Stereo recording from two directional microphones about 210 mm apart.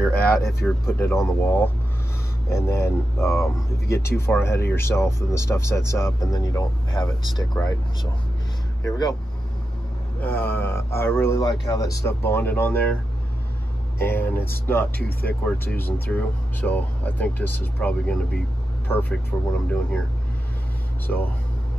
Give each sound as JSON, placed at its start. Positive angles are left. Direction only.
{"t": 0.0, "sound": "speech", "side_deg": 5}
{"t": 0.4, "sound": "speech", "side_deg": 50}
{"t": 0.7, "sound": "speech", "side_deg": 10}
{"t": 10.2, "sound": "speech", "side_deg": 10}
{"t": 13.9, "sound": "speech", "side_deg": 10}
{"t": 15.0, "sound": "speech", "side_deg": 45}
{"t": 15.8, "sound": "speech", "side_deg": 5}
{"t": 21.1, "sound": "speech", "side_deg": 5}